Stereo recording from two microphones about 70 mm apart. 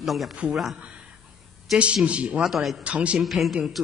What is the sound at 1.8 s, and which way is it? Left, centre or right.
Speech, centre.